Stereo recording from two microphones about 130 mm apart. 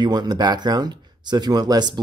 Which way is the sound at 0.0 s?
35° right (ahead or behind).